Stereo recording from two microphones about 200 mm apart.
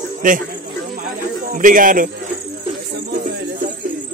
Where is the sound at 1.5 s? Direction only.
40° right (ahead or behind).